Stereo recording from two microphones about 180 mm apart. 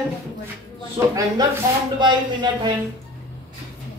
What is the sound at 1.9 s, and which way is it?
Speech, 25° right (ahead or behind).